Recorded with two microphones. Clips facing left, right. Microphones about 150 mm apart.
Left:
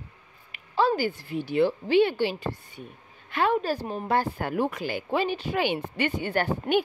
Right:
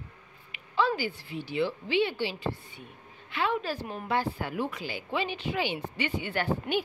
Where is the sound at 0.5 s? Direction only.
40° left (ahead or behind).